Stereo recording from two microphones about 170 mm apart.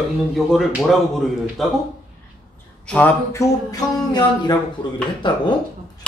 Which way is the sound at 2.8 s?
10° left (ahead or behind).